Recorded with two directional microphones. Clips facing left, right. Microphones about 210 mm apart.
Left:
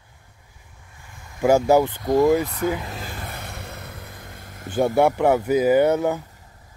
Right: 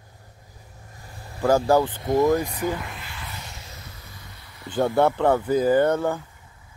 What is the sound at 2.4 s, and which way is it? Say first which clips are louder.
Speech: left 3 dB; 10° right (ahead or behind).